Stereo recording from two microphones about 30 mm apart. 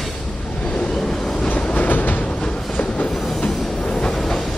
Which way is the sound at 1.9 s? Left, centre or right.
Left.